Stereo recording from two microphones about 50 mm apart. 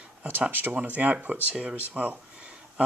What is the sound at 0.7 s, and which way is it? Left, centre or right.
Speech, right.